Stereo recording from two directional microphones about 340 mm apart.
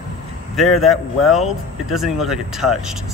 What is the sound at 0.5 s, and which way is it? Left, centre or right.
Speech, centre.